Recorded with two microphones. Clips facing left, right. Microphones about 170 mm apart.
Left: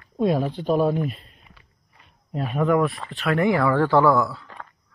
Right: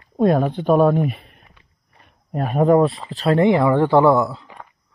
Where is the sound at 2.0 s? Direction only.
50° right (ahead or behind).